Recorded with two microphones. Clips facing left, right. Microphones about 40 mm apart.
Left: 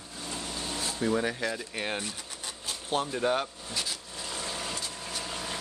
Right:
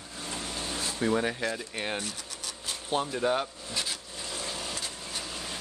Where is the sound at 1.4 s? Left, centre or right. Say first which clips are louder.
Even; centre.